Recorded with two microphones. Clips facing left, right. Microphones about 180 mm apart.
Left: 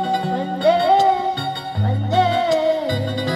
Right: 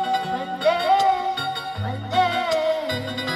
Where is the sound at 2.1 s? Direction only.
35° left (ahead or behind).